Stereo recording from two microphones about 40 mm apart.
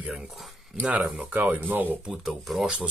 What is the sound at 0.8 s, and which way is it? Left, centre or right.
Speech, right.